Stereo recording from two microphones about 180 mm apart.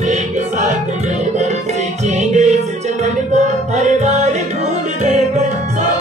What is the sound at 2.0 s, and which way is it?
Music, 40° right (ahead or behind).